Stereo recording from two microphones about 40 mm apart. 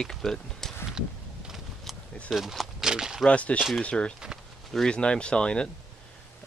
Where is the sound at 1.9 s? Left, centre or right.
Centre.